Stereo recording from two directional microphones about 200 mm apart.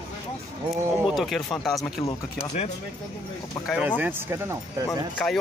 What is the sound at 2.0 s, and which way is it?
Speech, 35° left (ahead or behind).